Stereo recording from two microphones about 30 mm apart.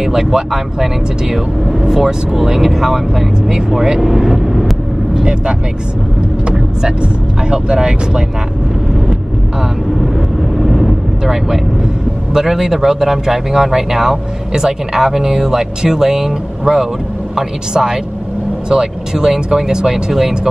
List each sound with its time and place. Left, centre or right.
0.0 s speech: centre
4.0 s vehicle: centre
7.0 s speech: right
10.6 s vehicle: centre
12.4 s speech: centre